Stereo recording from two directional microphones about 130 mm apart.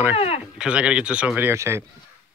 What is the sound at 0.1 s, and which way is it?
Speech, 50° left (ahead or behind).